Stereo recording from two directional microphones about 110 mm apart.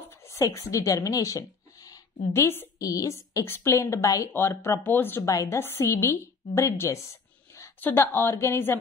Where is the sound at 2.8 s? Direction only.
30° left (ahead or behind).